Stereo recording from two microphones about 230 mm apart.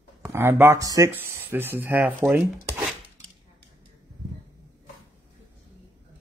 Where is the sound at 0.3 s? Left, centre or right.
Centre.